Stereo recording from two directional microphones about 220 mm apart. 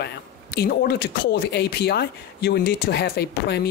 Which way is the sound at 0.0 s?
45° left (ahead or behind).